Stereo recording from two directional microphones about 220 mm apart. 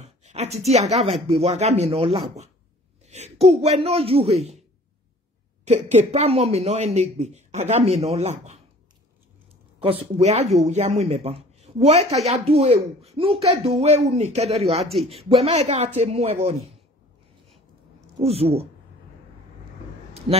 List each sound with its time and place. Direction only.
0.0 s a woman's voice: 30° right (ahead or behind)
5.7 s speech: 30° right (ahead or behind)
9.8 s speech: 25° right (ahead or behind)
18.2 s speech: 25° right (ahead or behind)